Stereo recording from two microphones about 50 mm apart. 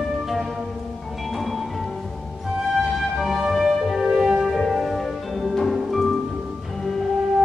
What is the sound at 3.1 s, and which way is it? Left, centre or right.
Music, centre.